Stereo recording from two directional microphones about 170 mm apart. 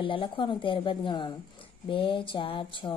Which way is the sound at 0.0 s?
30° left (ahead or behind).